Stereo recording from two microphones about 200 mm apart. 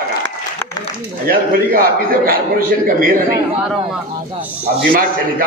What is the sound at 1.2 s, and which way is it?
A man's voice, 45° right (ahead or behind).